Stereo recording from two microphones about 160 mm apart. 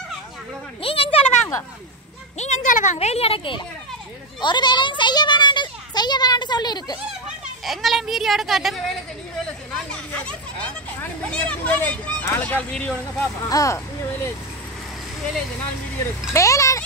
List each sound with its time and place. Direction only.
0.8 s a sound: 35° left (ahead or behind)
2.3 s a child's voice: 45° left (ahead or behind); by 7.0 s 25° left (ahead or behind)
7.6 s a child's voice: centre (ahead or behind)
13.2 s speech: 20° left (ahead or behind)
16.3 s speech: 20° left (ahead or behind)